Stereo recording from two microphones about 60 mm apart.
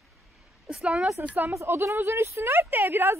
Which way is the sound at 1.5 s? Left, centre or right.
Right.